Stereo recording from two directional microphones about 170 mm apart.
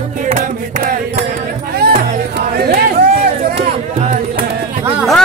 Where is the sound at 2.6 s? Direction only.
65° right (ahead or behind).